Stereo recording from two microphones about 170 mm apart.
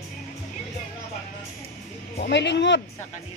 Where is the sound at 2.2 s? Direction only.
90° left.